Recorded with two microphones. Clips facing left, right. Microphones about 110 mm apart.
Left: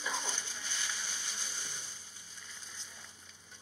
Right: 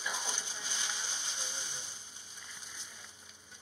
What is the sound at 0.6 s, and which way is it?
Splash, 20° right (ahead or behind).